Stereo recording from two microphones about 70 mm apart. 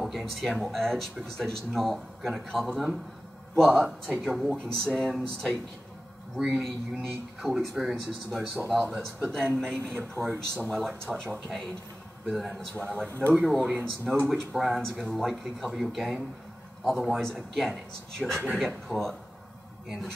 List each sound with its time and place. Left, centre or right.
0.0 s speech: centre
7.4 s a man's voice: centre
9.9 s speech: right
10.6 s speech: centre